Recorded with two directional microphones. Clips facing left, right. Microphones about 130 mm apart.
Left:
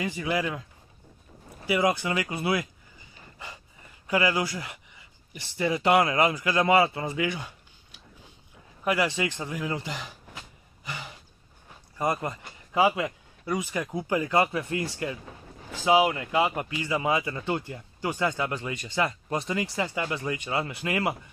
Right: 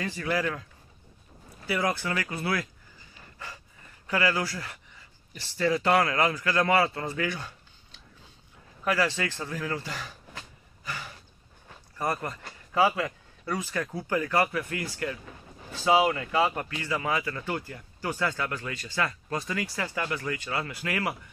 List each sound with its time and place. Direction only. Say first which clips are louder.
0.0 s speech: left 1 dB; 15° left (ahead or behind)
1.7 s speech: left 4 dB; 15° left (ahead or behind)
4.1 s speech: left 2 dB; 15° left (ahead or behind)
10.8 s a sound: even; 20° left (ahead or behind)
12.0 s speech: left 3 dB; 20° left (ahead or behind)
15.7 s speech: left 1 dB; 15° left (ahead or behind)